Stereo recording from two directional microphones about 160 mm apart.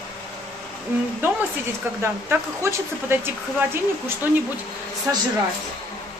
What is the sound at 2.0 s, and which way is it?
Speech, 15° right (ahead or behind).